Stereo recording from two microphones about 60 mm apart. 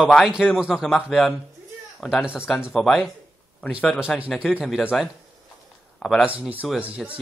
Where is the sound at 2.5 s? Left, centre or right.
Centre.